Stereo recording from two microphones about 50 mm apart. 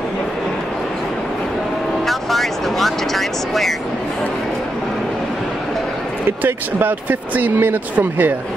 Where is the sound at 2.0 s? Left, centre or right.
Centre.